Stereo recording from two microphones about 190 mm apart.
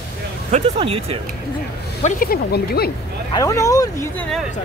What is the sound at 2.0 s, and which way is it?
Speech, 50° left (ahead or behind).